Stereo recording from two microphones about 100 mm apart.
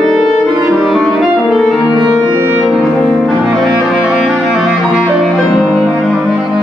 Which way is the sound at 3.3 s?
Centre (ahead or behind).